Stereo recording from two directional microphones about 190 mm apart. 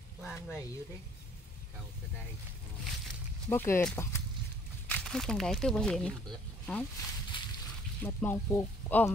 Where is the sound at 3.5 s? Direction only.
10° left (ahead or behind).